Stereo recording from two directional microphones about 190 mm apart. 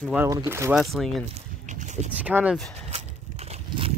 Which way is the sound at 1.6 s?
40° right (ahead or behind).